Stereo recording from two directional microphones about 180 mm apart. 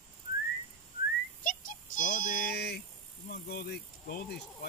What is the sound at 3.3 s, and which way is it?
Speech, 65° left (ahead or behind).